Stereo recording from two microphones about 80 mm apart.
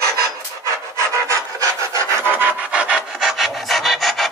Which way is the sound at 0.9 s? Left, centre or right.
Right.